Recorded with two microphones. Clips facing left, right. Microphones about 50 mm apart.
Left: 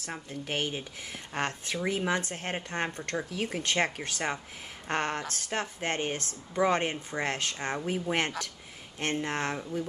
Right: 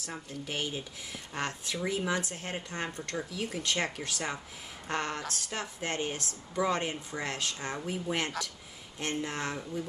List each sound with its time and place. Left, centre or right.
0.0 s speech: left